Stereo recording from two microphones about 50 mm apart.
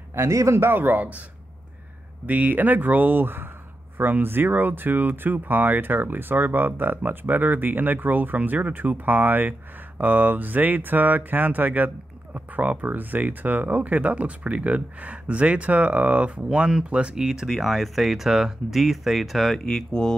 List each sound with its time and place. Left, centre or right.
0.1 s speech: right
0.6 s speech: right
2.2 s speech: right
17.1 s speech: centre
17.5 s speech: centre
19.6 s speech: centre